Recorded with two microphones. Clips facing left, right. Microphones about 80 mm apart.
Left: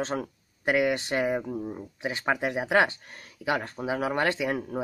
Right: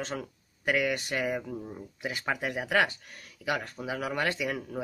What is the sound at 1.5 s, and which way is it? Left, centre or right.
Speech, centre.